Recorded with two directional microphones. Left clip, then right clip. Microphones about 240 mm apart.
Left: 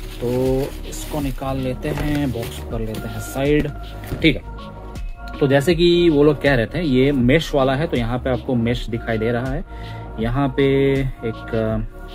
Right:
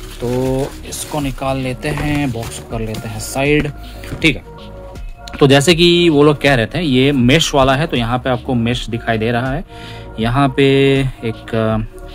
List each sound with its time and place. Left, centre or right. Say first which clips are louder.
0.6 s a man's voice: right 3 dB; right
5.4 s a man's voice: right 6 dB; right